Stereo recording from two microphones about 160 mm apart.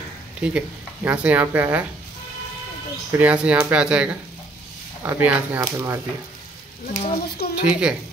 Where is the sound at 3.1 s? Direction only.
10° right (ahead or behind).